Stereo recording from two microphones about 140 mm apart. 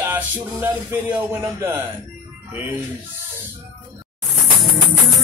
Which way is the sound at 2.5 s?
15° right (ahead or behind).